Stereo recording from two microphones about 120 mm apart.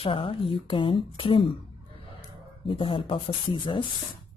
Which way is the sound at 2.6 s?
45° left (ahead or behind).